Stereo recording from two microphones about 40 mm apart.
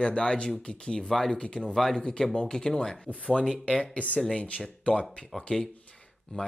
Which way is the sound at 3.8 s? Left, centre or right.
Left.